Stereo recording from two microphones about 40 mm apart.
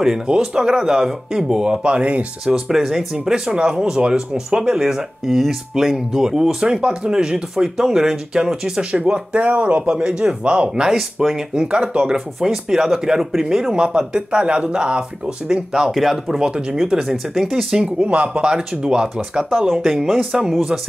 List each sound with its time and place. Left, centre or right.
0.3 s speech: centre
2.4 s speech: centre
5.2 s speech: centre
9.3 s speech: right
9.9 s speech: right
10.8 s speech: centre
11.3 s speech: right
12.4 s speech: centre
15.9 s speech: centre
16.3 s speech: right
18.0 s speech: right
18.4 s speech: centre
19.7 s speech: centre